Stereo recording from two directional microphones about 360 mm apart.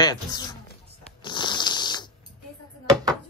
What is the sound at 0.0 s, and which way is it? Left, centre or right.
Speech, centre.